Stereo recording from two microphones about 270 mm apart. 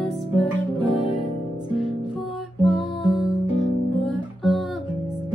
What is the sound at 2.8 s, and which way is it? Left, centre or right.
Music, centre.